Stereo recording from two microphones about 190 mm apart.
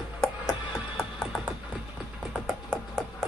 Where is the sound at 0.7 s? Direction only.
Centre (ahead or behind).